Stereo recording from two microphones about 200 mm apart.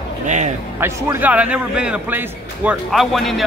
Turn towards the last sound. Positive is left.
turn(degrees=0)  # may be behind; listen again after turning